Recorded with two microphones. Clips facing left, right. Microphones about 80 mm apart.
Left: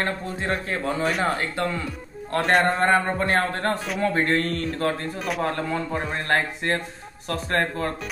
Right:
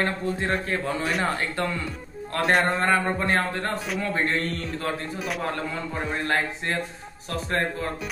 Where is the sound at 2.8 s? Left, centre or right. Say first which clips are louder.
Left 2 dB; left.